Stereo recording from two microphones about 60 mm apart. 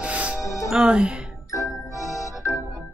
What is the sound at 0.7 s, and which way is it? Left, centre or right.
Speech, centre.